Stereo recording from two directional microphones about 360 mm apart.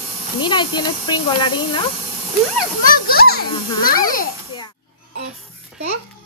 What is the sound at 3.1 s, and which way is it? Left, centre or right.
A child's voice, left.